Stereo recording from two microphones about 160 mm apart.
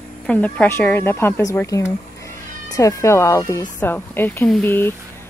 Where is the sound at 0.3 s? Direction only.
10° left (ahead or behind).